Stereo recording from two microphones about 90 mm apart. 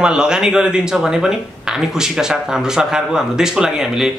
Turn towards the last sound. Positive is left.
turn(degrees=-5)  # may be behind; listen again after turning